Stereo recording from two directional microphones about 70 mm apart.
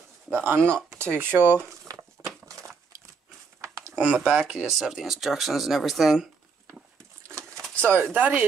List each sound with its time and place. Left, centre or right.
0.3 s speech: right
0.8 s speech: right
1.9 s a sound: right
4.1 s speech: centre
4.6 s speech: centre
7.2 s a sound: right
7.8 s speech: right